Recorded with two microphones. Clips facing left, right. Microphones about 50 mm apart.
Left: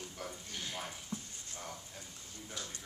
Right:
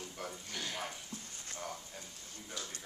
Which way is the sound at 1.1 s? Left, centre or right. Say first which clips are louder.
Left 4 dB; left.